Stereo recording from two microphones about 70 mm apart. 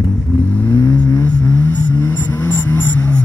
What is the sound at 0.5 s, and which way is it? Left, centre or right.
Vehicle, left.